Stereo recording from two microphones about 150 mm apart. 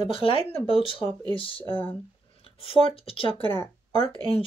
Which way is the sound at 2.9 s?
40° left (ahead or behind).